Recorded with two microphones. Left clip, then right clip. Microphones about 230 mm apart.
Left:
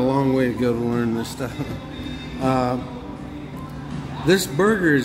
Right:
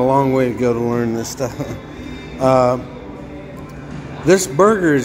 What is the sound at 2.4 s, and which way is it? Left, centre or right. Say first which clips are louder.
Speech: right 9 dB; centre.